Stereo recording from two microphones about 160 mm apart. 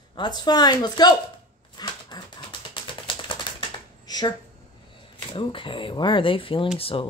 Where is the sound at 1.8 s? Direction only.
25° left (ahead or behind).